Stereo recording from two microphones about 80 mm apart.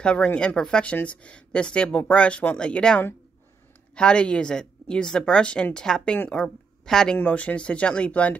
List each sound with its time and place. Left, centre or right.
0.0 s a woman's voice: centre